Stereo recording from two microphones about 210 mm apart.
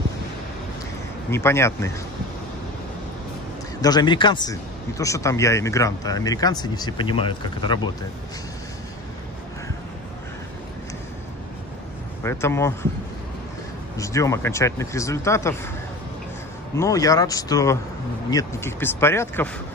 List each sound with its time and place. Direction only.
1.3 s speech: 10° left (ahead or behind)
3.8 s speech: 20° left (ahead or behind)
12.2 s speech: 10° left (ahead or behind)
13.9 s speech: 15° left (ahead or behind)
16.7 s speech: 15° left (ahead or behind)